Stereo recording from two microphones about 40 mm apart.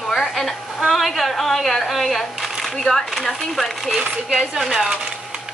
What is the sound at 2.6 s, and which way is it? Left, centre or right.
A woman's voice, centre.